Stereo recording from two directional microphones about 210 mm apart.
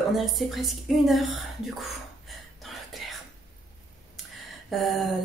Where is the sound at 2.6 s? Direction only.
Centre (ahead or behind).